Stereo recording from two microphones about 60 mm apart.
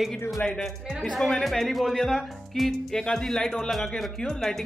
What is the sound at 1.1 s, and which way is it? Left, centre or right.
Speech, centre.